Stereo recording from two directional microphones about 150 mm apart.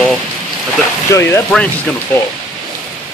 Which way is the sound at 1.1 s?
20° left (ahead or behind).